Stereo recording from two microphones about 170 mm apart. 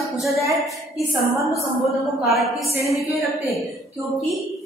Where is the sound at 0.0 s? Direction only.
Centre (ahead or behind).